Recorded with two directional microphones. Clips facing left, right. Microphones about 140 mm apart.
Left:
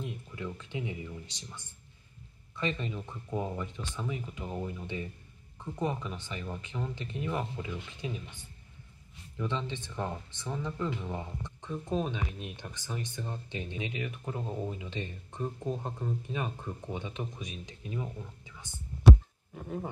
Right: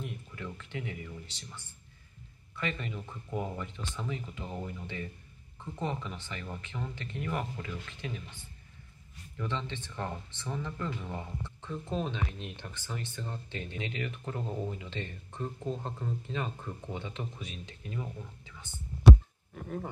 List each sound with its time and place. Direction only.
0.6 s speech: 20° left (ahead or behind)
9.4 s speech: 15° left (ahead or behind)